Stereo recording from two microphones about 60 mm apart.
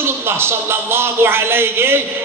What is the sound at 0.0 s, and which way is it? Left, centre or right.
Speech, right.